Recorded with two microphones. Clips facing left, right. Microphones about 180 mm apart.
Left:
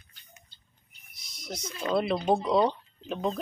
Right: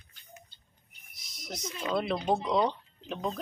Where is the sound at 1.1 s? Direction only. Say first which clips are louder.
Left 2 dB; centre (ahead or behind).